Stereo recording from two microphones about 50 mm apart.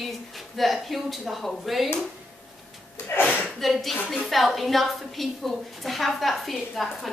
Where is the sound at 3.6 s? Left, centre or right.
Centre.